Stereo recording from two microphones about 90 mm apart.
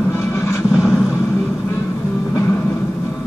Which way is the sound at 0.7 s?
5° right (ahead or behind).